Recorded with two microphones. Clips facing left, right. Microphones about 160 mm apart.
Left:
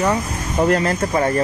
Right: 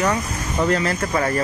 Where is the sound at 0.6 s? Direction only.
45° left (ahead or behind).